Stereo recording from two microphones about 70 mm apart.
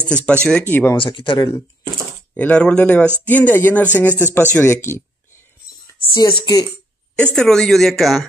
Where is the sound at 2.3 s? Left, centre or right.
Left.